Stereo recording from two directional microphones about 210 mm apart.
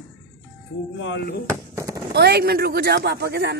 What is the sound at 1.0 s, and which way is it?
Speech, 60° left (ahead or behind).